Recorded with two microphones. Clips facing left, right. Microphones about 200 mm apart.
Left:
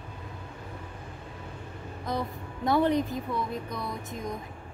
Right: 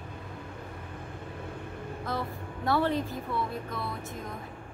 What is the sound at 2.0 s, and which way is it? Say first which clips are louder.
Speech: left 3 dB; 15° left (ahead or behind).